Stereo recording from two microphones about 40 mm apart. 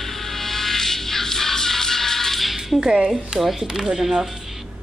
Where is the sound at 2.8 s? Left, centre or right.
Right.